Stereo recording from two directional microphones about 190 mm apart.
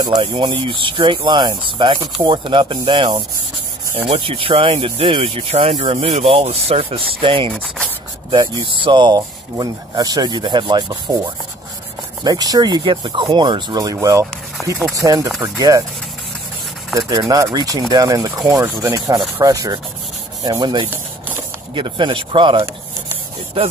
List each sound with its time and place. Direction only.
0.0 s speech: 25° right (ahead or behind)
7.5 s speech: 5° left (ahead or behind)
8.3 s speech: 25° right (ahead or behind)
12.2 s speech: 20° right (ahead or behind)
16.9 s speech: 20° right (ahead or behind)